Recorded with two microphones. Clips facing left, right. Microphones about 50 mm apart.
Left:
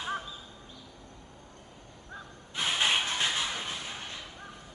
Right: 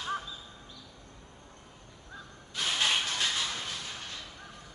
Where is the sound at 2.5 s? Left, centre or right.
Left.